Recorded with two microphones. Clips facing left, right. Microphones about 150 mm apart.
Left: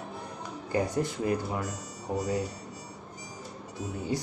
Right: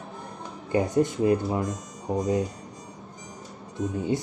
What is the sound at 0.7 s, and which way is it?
Speech, 20° right (ahead or behind).